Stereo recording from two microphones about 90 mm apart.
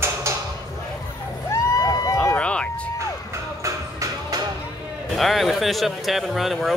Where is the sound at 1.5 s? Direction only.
40° left (ahead or behind).